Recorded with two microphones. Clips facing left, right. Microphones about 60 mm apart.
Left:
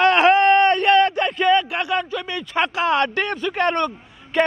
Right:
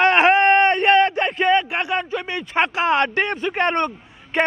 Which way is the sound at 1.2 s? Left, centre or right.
Right.